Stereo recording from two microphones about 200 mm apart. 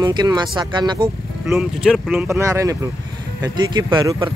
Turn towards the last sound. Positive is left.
turn(degrees=-20)  # may be behind; listen again after turning